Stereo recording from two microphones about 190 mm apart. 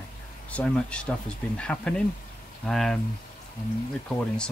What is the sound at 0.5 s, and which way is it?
Speech, 5° left (ahead or behind).